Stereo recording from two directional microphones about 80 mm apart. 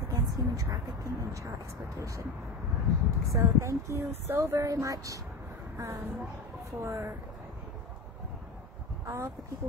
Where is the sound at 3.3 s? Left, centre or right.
Right.